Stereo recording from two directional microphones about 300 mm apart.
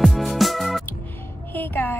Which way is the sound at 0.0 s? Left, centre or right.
Centre.